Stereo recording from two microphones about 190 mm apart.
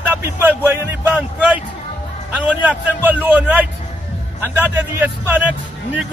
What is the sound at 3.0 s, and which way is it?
A man's voice, 10° right (ahead or behind).